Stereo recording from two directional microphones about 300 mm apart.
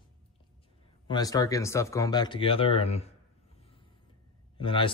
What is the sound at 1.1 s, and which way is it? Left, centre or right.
Speech, centre.